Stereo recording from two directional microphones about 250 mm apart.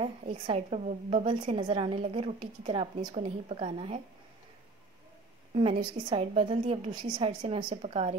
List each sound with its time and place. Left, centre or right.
0.0 s a woman's voice: right
5.5 s a woman's voice: right